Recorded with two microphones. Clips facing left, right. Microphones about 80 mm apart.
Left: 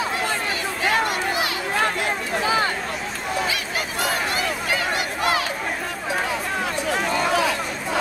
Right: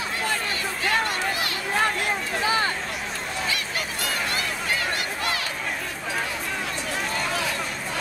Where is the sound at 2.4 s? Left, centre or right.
Centre.